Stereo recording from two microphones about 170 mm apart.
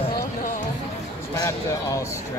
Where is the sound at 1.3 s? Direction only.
20° left (ahead or behind).